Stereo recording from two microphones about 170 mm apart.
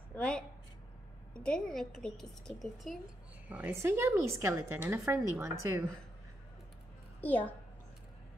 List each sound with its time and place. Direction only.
0.1 s a sound: 5° left (ahead or behind)
1.4 s a woman's voice: 5° left (ahead or behind); by 5.9 s 15° right (ahead or behind)
7.2 s a woman's voice: 10° left (ahead or behind)